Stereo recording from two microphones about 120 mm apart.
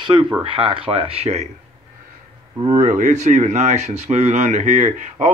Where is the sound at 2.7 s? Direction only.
90° right.